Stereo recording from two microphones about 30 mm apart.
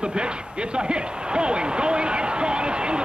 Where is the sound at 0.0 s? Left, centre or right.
Right.